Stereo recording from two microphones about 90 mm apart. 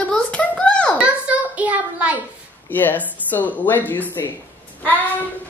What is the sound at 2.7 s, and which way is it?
Speech, 20° left (ahead or behind).